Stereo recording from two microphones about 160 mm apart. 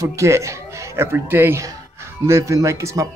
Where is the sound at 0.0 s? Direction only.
20° right (ahead or behind).